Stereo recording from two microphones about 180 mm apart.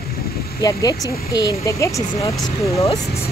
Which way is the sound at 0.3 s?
60° left (ahead or behind).